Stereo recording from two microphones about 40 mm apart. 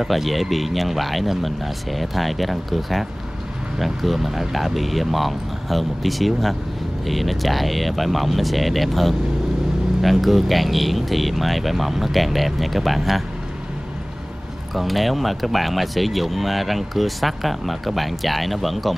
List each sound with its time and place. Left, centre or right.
0.0 s speech: centre
14.7 s speech: centre